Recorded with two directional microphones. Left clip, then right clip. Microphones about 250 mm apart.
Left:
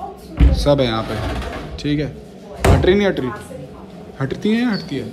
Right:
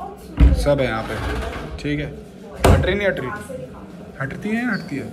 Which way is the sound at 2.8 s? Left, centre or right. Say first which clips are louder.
Left 4 dB; left.